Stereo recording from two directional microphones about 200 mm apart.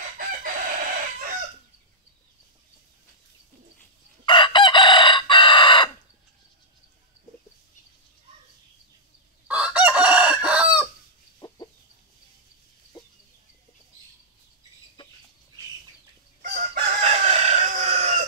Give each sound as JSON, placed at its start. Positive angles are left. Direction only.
{"t": 0.2, "sound": "chicken", "side_deg": -45}
{"t": 4.3, "sound": "chicken", "side_deg": 25}
{"t": 9.5, "sound": "chicken", "side_deg": -5}
{"t": 11.3, "sound": "chicken", "side_deg": 20}
{"t": 16.7, "sound": "chicken", "side_deg": -35}